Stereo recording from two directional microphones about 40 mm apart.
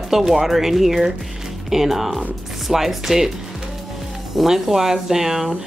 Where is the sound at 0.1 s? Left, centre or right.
Centre.